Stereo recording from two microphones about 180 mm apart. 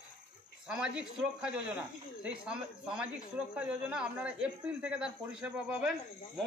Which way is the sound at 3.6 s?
5° right (ahead or behind).